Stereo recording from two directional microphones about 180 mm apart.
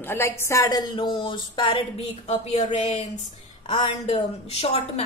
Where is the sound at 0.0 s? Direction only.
15° left (ahead or behind).